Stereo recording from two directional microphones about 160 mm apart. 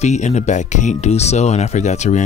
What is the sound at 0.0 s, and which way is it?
Speech, 45° left (ahead or behind).